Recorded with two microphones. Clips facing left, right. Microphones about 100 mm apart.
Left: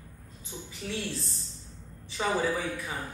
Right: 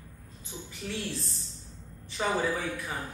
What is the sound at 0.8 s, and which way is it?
Speech, 5° right (ahead or behind).